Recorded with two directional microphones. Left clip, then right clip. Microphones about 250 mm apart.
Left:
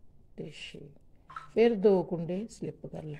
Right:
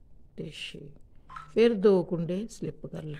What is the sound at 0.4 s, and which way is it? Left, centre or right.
Speech, centre.